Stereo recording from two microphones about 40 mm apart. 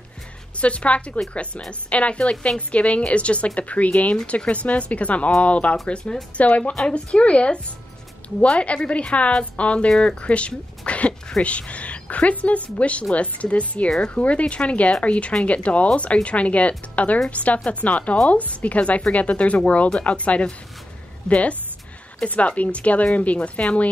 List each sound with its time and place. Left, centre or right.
0.6 s a woman's voice: left
13.8 s a woman's voice: left
14.2 s speech: left